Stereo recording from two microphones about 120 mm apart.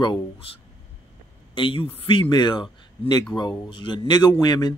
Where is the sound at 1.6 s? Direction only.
45° left (ahead or behind).